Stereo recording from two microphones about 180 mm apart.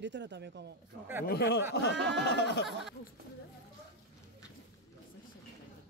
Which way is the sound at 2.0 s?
70° right (ahead or behind).